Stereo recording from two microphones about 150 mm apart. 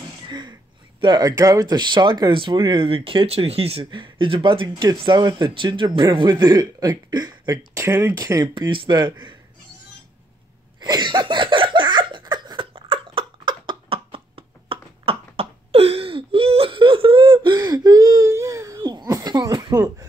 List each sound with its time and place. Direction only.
0.3 s sneeze: 30° right (ahead or behind)
1.0 s speech: 25° right (ahead or behind)
10.8 s a sound: 30° right (ahead or behind)